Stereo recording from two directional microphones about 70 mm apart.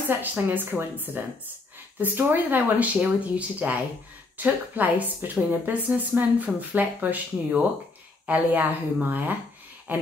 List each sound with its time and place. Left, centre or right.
0.2 s speech: right